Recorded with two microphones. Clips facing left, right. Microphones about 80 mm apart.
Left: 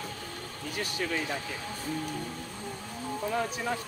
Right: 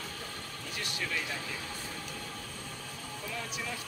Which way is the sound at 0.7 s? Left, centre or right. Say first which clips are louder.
Left 5 dB; left.